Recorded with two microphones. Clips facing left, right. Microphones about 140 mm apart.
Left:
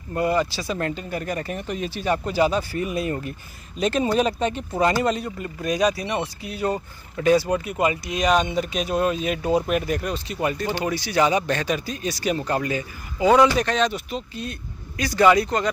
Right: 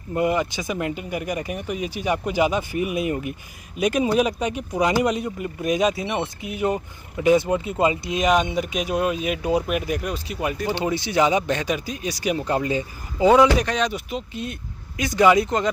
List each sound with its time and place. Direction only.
0.1 s speech: 20° right (ahead or behind)
10.7 s speech: 25° right (ahead or behind)
13.3 s speech: 10° right (ahead or behind)